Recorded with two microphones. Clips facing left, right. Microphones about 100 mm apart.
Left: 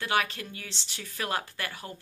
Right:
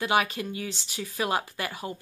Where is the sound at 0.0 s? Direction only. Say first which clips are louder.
Right 4 dB; 15° right (ahead or behind).